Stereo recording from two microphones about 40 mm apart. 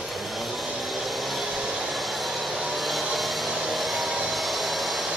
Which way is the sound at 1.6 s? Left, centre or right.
Centre.